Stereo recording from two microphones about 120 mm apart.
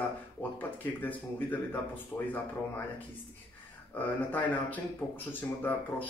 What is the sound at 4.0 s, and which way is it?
Speech, 15° left (ahead or behind).